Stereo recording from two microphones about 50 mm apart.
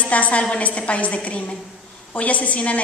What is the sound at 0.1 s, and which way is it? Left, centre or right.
A woman's voice, left.